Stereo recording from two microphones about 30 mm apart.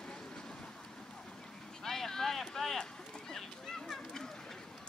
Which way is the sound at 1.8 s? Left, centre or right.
Centre.